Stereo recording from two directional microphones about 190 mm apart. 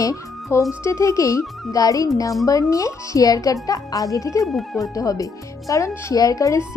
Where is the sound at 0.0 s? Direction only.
15° left (ahead or behind).